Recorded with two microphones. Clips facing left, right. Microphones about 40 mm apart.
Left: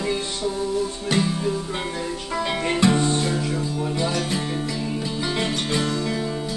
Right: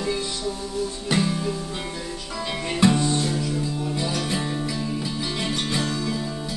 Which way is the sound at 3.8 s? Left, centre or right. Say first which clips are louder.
Left 3 dB; left.